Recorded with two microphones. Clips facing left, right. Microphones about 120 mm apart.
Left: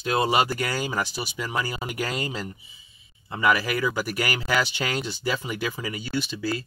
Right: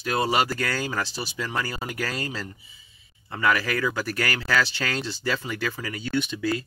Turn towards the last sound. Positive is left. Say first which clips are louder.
# right 2 dB
turn(degrees=5)  # may be behind; listen again after turning